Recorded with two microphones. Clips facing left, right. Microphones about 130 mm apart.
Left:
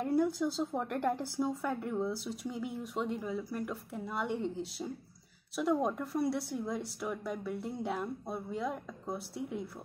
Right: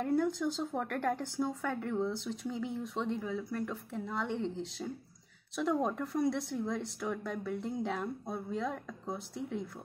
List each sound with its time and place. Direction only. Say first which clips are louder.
0.0 s speech: left 1 dB; 5° left (ahead or behind)